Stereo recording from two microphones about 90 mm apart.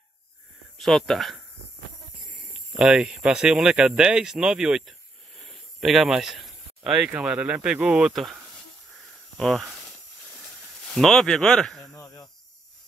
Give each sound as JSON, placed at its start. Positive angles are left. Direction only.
{"t": 0.7, "sound": "speech", "side_deg": 5}
{"t": 2.7, "sound": "speech", "side_deg": -5}
{"t": 5.4, "sound": "a sound", "side_deg": 0}
{"t": 7.1, "sound": "speech", "side_deg": -15}
{"t": 8.1, "sound": "snake", "side_deg": 0}
{"t": 9.4, "sound": "speech", "side_deg": 5}
{"t": 11.9, "sound": "cricket", "side_deg": 40}